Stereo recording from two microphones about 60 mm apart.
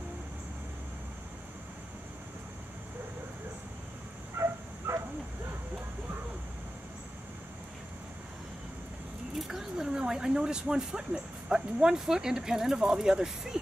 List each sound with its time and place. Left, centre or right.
4.4 s dog: right
9.4 s speech: centre